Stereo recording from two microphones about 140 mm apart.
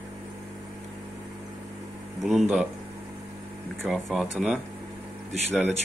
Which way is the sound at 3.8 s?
Centre (ahead or behind).